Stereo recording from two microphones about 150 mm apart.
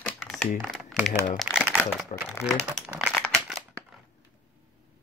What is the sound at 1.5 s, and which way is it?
Crumpling, 10° right (ahead or behind).